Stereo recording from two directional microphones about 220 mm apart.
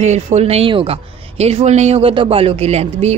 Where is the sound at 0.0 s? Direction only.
30° right (ahead or behind).